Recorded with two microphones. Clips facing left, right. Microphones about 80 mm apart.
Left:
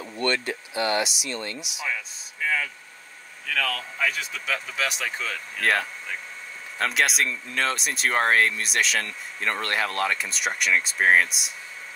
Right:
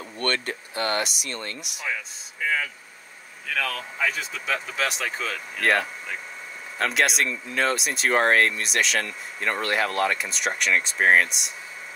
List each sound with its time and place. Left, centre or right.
0.2 s speech: right
2.4 s a sound: centre
3.4 s speech: centre
4.1 s speech: centre